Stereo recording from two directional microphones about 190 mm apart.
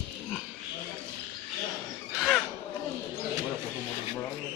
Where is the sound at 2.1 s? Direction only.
5° left (ahead or behind).